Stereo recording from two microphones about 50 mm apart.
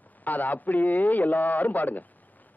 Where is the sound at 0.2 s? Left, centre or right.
Left.